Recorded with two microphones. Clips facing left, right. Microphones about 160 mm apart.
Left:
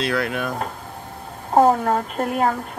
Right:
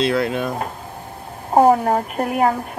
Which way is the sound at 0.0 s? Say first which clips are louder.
Right 4 dB; 25° right (ahead or behind).